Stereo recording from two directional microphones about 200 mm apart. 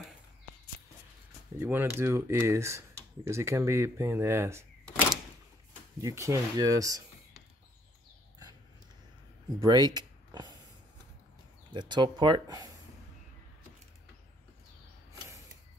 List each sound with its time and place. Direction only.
1.6 s speech: 10° right (ahead or behind)
5.9 s speech: 15° right (ahead or behind)
9.6 s speech: 20° right (ahead or behind)
11.7 s speech: 20° right (ahead or behind)